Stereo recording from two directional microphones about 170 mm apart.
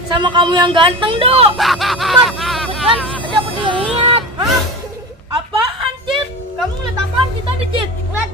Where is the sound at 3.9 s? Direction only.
35° right (ahead or behind).